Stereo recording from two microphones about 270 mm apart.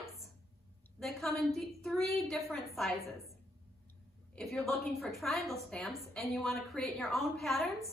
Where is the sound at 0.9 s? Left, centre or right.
Centre.